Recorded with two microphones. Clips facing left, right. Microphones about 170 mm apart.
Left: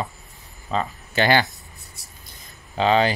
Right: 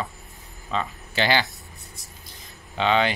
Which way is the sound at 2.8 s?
40° left (ahead or behind).